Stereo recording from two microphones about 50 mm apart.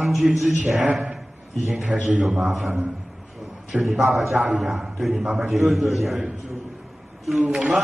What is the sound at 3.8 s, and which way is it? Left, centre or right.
A man's voice, centre.